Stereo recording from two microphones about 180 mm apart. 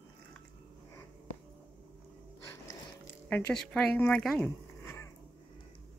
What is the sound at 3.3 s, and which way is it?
Speech, 10° left (ahead or behind).